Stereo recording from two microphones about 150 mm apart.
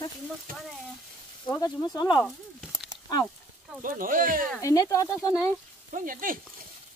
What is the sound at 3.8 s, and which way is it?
Speech, 65° right (ahead or behind).